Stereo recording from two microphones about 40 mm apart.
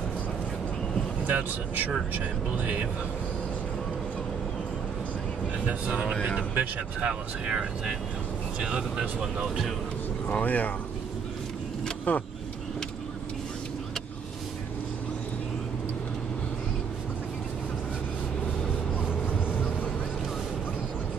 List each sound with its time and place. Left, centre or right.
1.2 s speech: right
5.7 s speech: right
6.5 s speech: right
7.1 s speech: right
10.4 s speech: left
12.1 s speech: left